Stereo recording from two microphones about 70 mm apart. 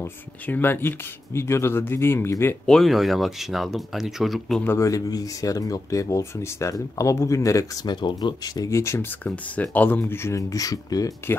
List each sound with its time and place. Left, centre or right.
0.0 s speech: left
2.6 s speech: centre
4.6 s speech: left
4.9 s speech: left
7.8 s speech: left
8.6 s speech: left
9.2 s speech: left
10.3 s speech: left